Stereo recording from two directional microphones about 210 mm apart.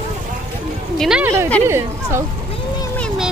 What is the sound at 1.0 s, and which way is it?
A woman's voice, 5° right (ahead or behind).